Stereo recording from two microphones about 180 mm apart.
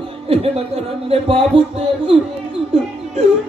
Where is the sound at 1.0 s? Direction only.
35° right (ahead or behind).